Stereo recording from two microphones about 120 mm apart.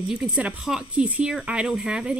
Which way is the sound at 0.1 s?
5° right (ahead or behind).